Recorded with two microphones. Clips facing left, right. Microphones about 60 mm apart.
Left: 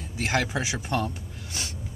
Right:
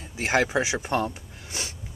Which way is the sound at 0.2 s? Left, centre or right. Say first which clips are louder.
Right 4 dB; centre.